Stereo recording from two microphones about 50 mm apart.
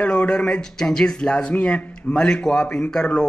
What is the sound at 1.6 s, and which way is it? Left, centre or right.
Speech, left.